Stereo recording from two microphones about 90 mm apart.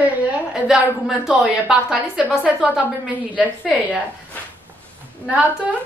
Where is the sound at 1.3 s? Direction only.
10° right (ahead or behind).